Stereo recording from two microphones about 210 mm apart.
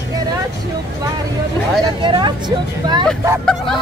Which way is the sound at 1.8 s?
20° right (ahead or behind).